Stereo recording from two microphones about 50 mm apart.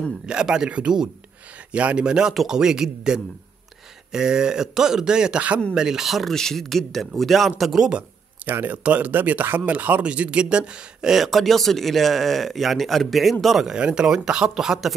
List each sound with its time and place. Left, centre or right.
0.3 s speech: centre
6.3 s speech: centre
8.5 s speech: right; by 11.1 s centre
11.1 s speech: centre
13.7 s speech: centre